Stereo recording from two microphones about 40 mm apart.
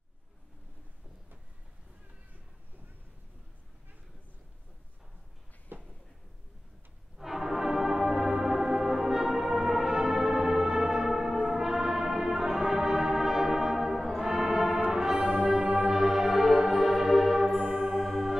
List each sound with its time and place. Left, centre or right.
5.7 s a sound: right
7.2 s music: centre
14.9 s brass instrument: centre
15.3 s music: centre
15.8 s music: centre